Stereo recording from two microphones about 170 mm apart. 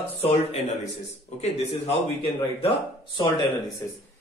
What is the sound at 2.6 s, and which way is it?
Speech, 30° left (ahead or behind).